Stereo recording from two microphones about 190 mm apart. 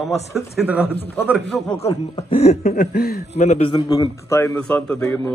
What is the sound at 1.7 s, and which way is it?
Speech, 30° left (ahead or behind).